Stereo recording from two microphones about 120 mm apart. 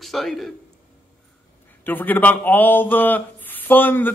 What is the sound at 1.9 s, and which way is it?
Speech, 15° left (ahead or behind).